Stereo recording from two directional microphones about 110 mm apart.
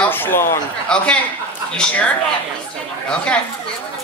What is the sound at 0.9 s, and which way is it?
Speech, 10° left (ahead or behind).